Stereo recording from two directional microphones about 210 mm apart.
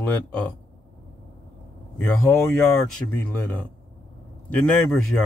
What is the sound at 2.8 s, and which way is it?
Speech, 5° left (ahead or behind).